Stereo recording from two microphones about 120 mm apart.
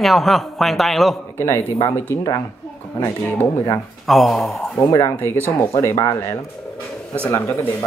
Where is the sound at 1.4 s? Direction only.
25° left (ahead or behind).